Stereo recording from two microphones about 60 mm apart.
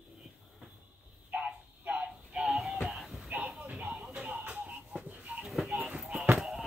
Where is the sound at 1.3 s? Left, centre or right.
Right; by 3.3 s centre.